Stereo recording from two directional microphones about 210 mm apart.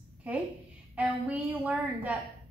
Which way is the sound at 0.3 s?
5° right (ahead or behind).